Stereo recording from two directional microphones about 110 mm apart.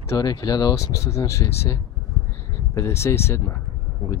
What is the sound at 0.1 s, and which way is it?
Speech, 35° left (ahead or behind).